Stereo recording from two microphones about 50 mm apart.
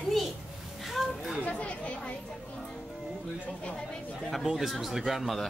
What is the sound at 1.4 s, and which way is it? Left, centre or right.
Speech, left.